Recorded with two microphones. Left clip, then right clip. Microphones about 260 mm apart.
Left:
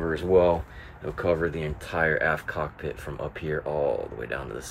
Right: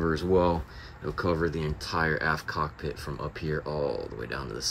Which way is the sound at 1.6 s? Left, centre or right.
Centre.